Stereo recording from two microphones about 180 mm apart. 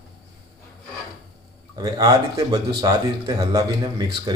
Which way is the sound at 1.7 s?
20° right (ahead or behind).